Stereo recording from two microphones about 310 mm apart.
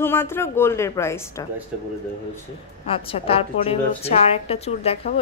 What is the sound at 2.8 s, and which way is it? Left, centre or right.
A woman's voice, centre.